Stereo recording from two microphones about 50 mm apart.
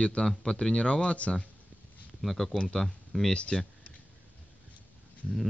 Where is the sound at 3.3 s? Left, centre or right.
Centre.